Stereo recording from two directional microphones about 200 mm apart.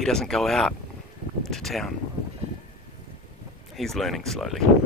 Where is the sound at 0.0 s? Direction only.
5° left (ahead or behind).